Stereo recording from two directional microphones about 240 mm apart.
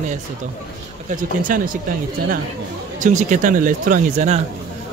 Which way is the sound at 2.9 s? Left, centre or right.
Right.